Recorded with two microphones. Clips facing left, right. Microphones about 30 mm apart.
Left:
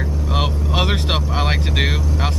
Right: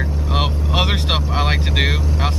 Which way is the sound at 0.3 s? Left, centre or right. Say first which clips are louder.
Right 1 dB; centre.